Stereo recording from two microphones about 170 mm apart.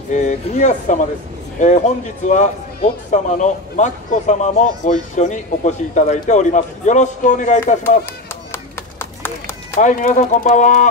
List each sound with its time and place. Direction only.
0.1 s speech: 45° left (ahead or behind)
9.2 s run: 10° left (ahead or behind)
9.8 s speech: 50° left (ahead or behind)